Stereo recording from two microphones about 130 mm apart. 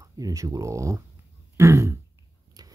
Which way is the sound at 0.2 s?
25° right (ahead or behind).